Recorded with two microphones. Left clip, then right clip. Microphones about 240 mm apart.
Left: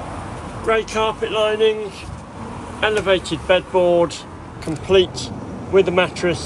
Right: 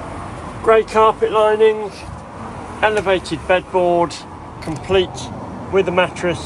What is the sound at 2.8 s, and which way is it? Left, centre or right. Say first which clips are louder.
Speech: right 2 dB; centre.